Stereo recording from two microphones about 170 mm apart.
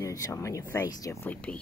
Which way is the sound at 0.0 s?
20° left (ahead or behind).